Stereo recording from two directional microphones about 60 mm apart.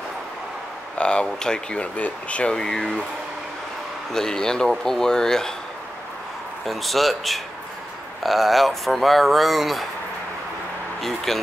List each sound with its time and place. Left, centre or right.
0.9 s speech: centre
4.1 s speech: centre
6.6 s speech: centre
11.0 s speech: centre